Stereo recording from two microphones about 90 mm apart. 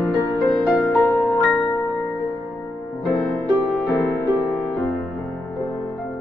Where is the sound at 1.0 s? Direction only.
30° left (ahead or behind).